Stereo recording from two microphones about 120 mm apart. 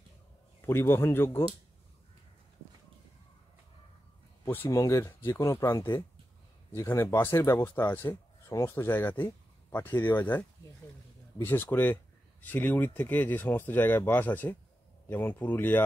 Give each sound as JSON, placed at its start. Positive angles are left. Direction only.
{"t": 0.6, "sound": "speech", "side_deg": 20}
{"t": 4.6, "sound": "a man's voice", "side_deg": 25}